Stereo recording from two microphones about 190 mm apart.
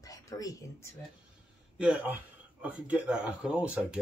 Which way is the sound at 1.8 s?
5° right (ahead or behind).